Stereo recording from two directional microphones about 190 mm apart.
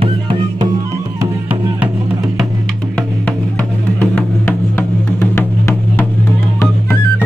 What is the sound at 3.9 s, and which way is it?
Music, 10° left (ahead or behind).